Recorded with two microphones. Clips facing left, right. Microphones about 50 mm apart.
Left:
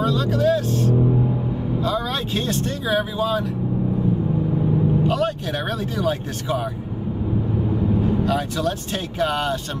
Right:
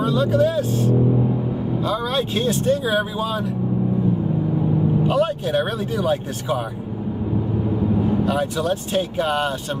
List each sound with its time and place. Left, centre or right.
0.0 s speech: centre
1.9 s speech: centre
5.0 s speech: centre
8.3 s speech: centre